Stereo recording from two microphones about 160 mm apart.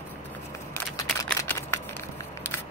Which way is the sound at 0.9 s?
20° left (ahead or behind).